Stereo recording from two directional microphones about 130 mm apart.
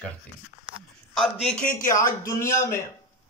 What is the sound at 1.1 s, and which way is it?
Speech, centre (ahead or behind).